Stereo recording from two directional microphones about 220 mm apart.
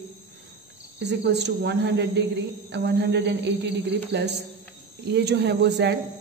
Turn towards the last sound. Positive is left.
turn(degrees=-50)  # may be behind; listen again after turning